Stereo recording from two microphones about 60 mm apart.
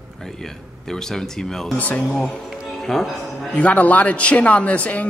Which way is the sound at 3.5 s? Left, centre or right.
Left.